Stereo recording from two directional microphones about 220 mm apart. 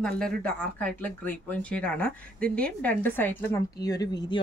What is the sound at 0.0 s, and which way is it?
A woman's voice, 5° left (ahead or behind).